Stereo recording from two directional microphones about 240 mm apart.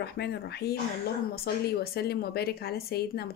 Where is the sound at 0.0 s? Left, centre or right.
Left.